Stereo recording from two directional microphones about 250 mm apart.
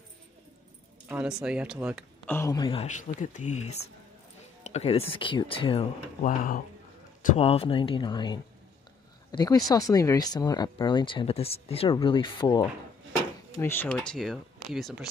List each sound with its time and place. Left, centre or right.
1.0 s speech: centre
2.2 s speech: centre